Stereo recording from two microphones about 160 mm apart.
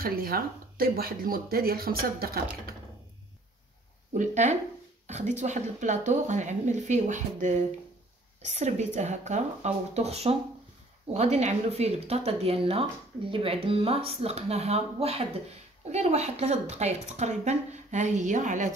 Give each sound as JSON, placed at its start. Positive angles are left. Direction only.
{"t": 0.0, "sound": "speech", "side_deg": -65}
{"t": 4.2, "sound": "a woman's voice", "side_deg": -45}